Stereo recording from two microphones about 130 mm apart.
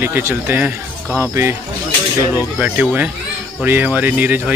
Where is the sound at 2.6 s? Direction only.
10° right (ahead or behind).